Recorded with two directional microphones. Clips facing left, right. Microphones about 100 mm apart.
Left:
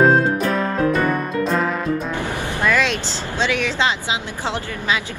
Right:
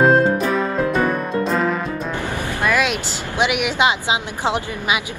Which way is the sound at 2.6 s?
10° right (ahead or behind).